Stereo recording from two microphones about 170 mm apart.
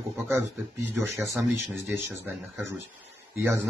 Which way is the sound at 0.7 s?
15° right (ahead or behind).